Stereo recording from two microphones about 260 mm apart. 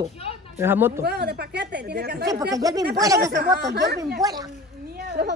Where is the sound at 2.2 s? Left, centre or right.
Centre.